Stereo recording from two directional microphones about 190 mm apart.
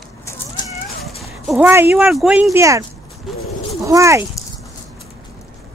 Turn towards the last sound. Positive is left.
turn(degrees=-15)  # may be behind; listen again after turning